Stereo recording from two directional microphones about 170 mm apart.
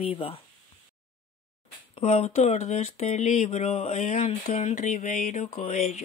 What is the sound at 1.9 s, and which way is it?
Speech, 40° left (ahead or behind).